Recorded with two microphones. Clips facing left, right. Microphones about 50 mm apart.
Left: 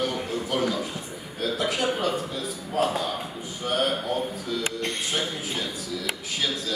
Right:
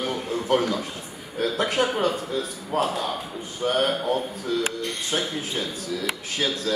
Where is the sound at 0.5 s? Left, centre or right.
Right.